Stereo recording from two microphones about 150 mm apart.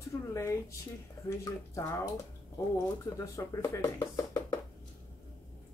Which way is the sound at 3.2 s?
20° left (ahead or behind).